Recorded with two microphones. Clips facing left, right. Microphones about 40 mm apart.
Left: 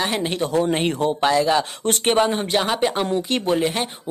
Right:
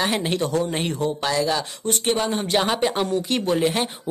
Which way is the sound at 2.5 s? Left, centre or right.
Centre.